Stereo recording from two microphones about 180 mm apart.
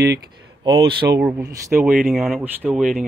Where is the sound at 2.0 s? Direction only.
Centre (ahead or behind).